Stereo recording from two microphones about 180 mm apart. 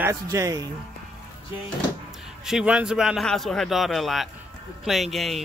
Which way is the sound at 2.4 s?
5° right (ahead or behind).